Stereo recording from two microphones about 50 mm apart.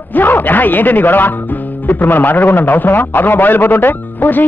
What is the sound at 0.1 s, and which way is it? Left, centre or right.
Speech, left.